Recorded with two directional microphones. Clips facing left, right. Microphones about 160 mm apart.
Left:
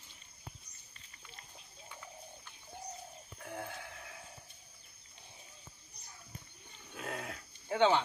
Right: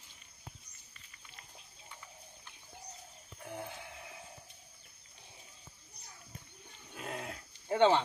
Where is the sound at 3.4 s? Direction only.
5° right (ahead or behind).